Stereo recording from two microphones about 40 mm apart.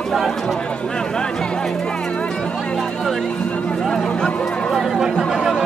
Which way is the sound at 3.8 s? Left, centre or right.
Centre.